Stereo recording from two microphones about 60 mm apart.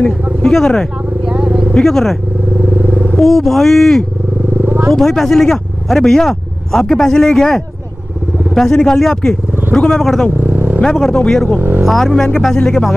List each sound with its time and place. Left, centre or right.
0.4 s speech: centre
1.2 s vehicle: centre
1.7 s speech: centre
2.6 s vehicle: right
3.2 s speech: centre
4.6 s wild animals: right
4.9 s speech: centre
10.5 s vehicle: right
10.8 s speech: centre